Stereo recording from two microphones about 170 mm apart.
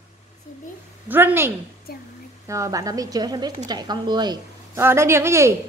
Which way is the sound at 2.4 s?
20° right (ahead or behind).